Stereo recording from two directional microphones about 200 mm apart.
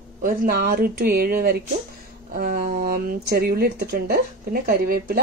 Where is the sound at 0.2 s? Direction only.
45° right (ahead or behind).